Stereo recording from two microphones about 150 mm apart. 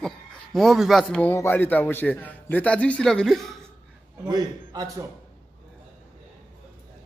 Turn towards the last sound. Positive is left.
turn(degrees=-25)  # may be behind; listen again after turning